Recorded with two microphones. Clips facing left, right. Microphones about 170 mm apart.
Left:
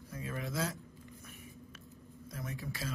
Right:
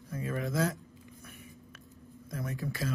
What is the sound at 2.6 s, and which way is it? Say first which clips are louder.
Speech: right 6 dB; 50° right (ahead or behind).